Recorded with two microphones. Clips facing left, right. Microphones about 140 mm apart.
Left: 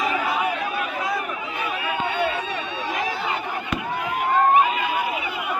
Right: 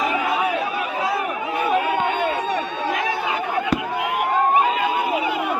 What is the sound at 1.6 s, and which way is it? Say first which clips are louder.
Chatter: right 7 dB; 50° right (ahead or behind).